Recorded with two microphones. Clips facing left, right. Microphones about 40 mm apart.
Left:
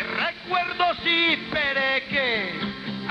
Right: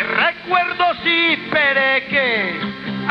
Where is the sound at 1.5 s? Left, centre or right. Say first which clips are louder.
Right 8 dB; right.